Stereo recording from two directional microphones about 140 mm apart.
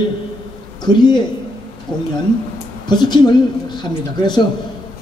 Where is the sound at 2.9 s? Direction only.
30° left (ahead or behind).